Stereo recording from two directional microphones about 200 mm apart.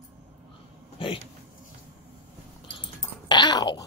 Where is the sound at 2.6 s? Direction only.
25° left (ahead or behind).